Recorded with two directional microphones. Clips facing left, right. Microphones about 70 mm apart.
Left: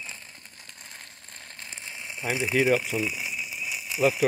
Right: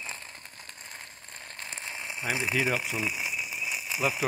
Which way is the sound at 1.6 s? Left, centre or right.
Right.